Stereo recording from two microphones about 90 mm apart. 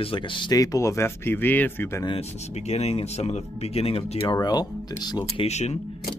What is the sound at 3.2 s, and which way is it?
Speech, 85° left.